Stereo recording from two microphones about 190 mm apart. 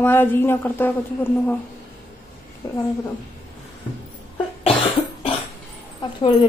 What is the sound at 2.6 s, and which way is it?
Speech, 20° left (ahead or behind).